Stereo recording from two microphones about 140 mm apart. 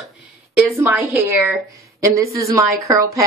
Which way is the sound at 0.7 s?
15° right (ahead or behind).